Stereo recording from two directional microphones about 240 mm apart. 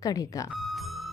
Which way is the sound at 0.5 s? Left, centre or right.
Centre.